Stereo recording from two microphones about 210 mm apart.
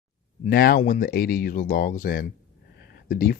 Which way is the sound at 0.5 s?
45° left (ahead or behind).